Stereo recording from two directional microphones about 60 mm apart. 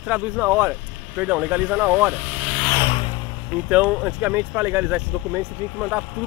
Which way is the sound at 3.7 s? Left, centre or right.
Right.